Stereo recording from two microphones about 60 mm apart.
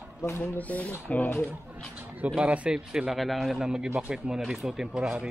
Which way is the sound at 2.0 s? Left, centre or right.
Right.